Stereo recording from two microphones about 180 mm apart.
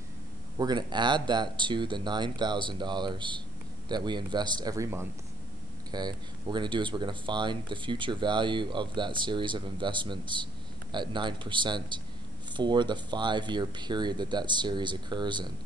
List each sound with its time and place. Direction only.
0.6 s speech: 25° right (ahead or behind)